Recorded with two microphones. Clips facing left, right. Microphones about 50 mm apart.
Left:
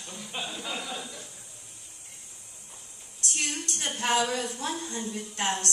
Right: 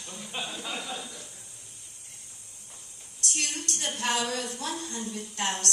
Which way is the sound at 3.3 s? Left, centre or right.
Left.